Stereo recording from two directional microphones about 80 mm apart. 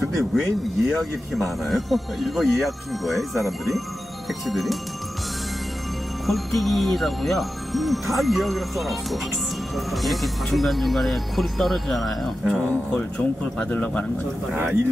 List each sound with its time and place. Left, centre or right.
0.2 s speech: centre
6.2 s speech: centre
13.6 s speech: centre
14.5 s speech: right